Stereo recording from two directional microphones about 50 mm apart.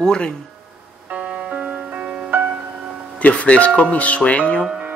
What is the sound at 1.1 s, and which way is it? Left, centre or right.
Music, right.